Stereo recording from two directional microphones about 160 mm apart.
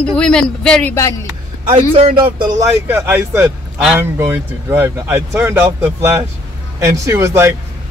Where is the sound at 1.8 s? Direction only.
40° right (ahead or behind).